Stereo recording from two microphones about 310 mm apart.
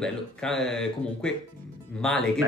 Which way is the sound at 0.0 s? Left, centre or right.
Centre.